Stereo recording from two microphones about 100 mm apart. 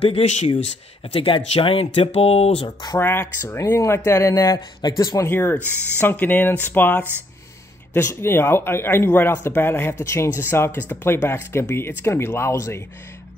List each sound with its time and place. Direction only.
0.0 s speech: 70° left (ahead or behind); by 2.7 s 90° left
3.0 s speech: 20° left (ahead or behind)
5.3 s speech: 20° left (ahead or behind)